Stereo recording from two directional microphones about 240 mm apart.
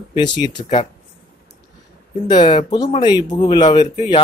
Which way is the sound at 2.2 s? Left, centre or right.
Centre.